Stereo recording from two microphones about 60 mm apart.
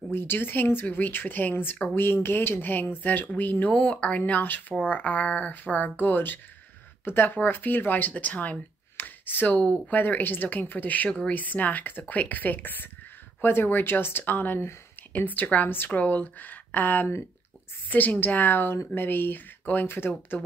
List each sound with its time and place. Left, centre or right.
0.1 s a woman's voice: left
3.7 s speech: centre
4.3 s speech: left
9.6 s a woman's voice: left